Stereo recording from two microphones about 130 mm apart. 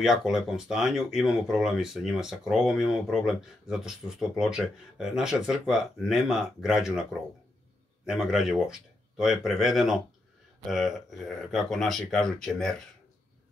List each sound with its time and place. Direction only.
0.0 s speech: 5° right (ahead or behind)